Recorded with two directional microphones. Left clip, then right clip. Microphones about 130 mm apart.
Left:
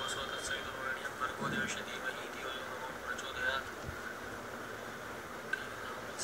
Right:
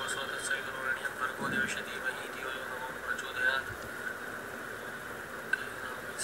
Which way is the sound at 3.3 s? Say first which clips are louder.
Right 6 dB; 10° right (ahead or behind).